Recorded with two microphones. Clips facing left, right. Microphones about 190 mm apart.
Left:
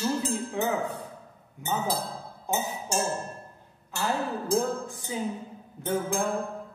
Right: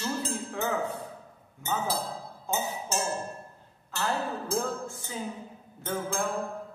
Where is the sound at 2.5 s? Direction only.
15° left (ahead or behind).